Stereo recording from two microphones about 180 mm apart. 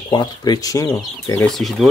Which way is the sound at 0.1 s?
25° left (ahead or behind).